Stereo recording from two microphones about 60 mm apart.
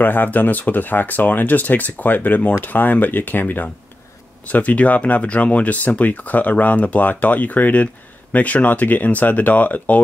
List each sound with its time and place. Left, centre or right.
0.0 s speech: left